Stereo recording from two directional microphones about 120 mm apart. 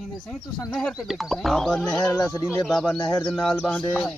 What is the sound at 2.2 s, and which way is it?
Speech, 25° left (ahead or behind).